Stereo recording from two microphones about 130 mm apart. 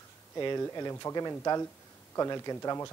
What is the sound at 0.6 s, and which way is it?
Speech, 25° left (ahead or behind).